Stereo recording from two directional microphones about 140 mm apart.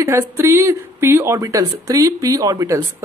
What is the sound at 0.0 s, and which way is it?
Speech, 20° right (ahead or behind).